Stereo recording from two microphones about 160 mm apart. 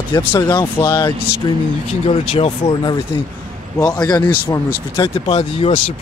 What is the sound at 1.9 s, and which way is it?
Speech, 40° left (ahead or behind).